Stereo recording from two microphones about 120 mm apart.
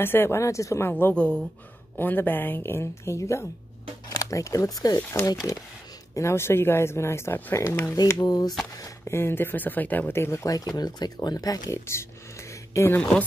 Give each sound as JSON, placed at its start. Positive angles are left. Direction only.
{"t": 0.0, "sound": "speech", "side_deg": 20}